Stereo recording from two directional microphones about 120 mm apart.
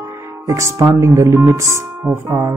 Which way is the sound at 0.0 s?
25° right (ahead or behind).